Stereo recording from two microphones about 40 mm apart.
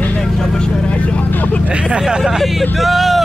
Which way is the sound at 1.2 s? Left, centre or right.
Left.